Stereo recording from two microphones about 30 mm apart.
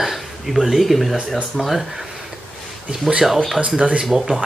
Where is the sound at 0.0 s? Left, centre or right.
Centre.